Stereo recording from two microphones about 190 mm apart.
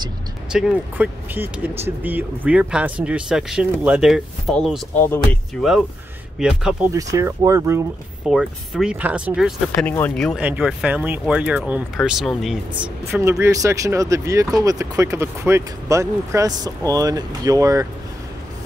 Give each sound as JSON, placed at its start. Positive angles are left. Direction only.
{"t": 0.5, "sound": "speech", "side_deg": -5}
{"t": 6.4, "sound": "speech", "side_deg": -5}
{"t": 6.9, "sound": "speech", "side_deg": -15}
{"t": 8.3, "sound": "speech", "side_deg": -5}
{"t": 9.8, "sound": "speech", "side_deg": 10}